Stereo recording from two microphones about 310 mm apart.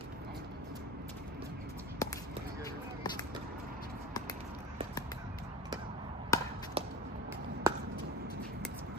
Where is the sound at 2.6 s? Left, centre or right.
Centre.